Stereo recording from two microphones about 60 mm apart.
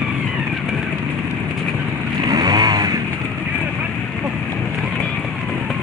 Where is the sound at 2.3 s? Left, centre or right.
Right.